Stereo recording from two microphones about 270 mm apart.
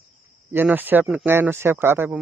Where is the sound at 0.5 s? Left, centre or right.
Centre.